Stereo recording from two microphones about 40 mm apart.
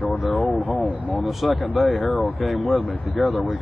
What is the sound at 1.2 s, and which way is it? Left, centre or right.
Speech, centre.